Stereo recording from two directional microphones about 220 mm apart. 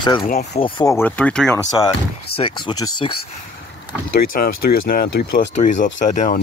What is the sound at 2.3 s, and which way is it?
Speech, 25° left (ahead or behind).